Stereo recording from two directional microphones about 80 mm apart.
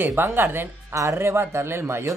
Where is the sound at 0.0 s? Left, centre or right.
Right.